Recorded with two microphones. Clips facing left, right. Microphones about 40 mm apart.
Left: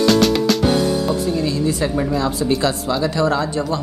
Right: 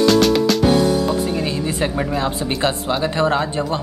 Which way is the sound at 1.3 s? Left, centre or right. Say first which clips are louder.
Left 2 dB; right.